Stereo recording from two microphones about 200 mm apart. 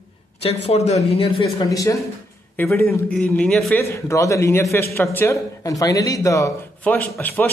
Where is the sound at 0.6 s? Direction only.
30° left (ahead or behind).